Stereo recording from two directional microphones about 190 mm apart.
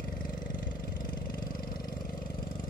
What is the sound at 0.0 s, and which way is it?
Vehicle, 50° left (ahead or behind).